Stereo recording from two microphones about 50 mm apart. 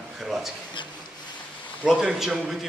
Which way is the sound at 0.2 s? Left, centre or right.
Centre.